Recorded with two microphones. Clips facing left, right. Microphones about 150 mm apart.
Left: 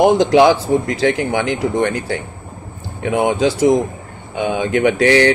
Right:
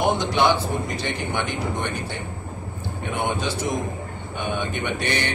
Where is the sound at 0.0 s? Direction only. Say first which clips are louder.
Left 10 dB; 90° left.